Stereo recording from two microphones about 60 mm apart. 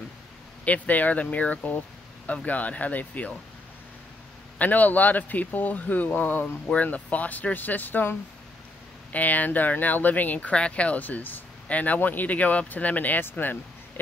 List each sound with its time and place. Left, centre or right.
0.7 s speech: left
4.6 s speech: left